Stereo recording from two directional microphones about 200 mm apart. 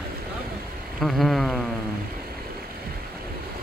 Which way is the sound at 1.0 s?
Centre (ahead or behind).